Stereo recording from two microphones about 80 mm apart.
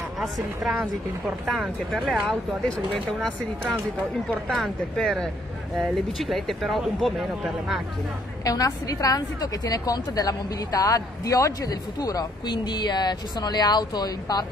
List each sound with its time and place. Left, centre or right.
0.2 s speech: centre
8.5 s a woman's voice: left